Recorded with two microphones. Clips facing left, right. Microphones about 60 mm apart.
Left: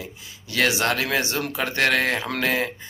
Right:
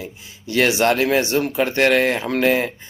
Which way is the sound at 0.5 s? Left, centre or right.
Right.